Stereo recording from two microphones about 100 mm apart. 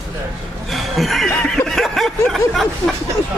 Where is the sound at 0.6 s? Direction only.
Centre (ahead or behind).